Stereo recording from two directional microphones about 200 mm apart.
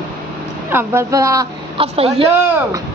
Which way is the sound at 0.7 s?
15° right (ahead or behind).